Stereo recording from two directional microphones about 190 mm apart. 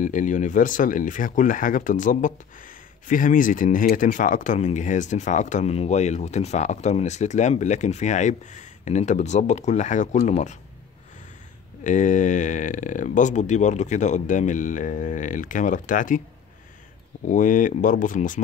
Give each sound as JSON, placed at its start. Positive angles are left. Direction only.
{"t": 0.0, "sound": "speech", "side_deg": 40}
{"t": 11.8, "sound": "speech", "side_deg": 40}
{"t": 17.3, "sound": "speech", "side_deg": 45}